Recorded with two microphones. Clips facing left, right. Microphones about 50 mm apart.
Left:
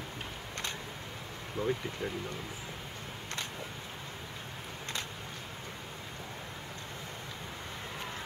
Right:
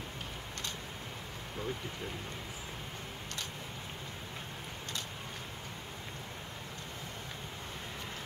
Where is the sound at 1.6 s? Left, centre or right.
Right.